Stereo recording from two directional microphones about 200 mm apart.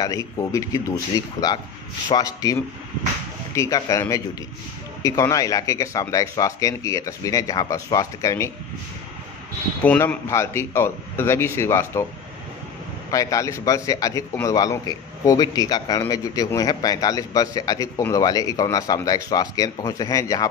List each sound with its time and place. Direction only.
0.0 s a man's voice: 15° left (ahead or behind)
3.5 s a man's voice: 15° left (ahead or behind)
9.8 s a man's voice: 10° left (ahead or behind)
13.1 s a man's voice: 15° left (ahead or behind)